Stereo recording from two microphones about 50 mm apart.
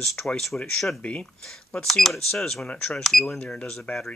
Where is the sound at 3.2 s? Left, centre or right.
Left.